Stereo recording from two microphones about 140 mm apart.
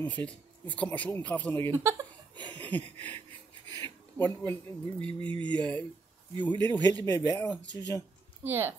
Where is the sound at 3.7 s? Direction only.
30° right (ahead or behind).